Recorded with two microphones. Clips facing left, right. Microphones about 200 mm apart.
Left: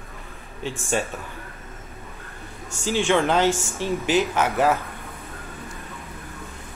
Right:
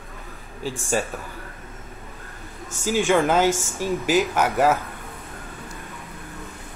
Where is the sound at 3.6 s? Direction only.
15° right (ahead or behind).